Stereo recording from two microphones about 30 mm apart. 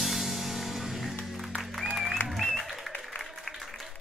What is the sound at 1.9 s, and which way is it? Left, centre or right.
Applause, centre.